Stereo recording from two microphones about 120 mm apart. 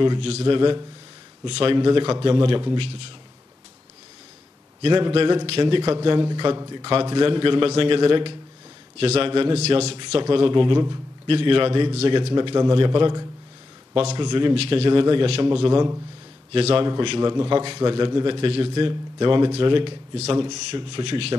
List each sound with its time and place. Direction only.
0.2 s a man's voice: 50° right (ahead or behind)
4.8 s a man's voice: 40° right (ahead or behind)
6.0 s a man's voice: 40° right (ahead or behind); by 9.9 s 60° right (ahead or behind)
10.3 s a man's voice: 45° right (ahead or behind)
12.4 s a man's voice: 35° right (ahead or behind); by 16.8 s 55° right (ahead or behind)
16.8 s a man's voice: 40° right (ahead or behind)